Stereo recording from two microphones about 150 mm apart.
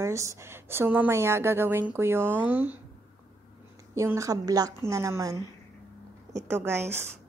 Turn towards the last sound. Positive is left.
turn(degrees=-15)  # may be behind; listen again after turning